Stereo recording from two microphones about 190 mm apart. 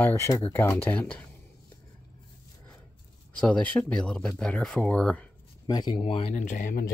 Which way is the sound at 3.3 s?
5° left (ahead or behind).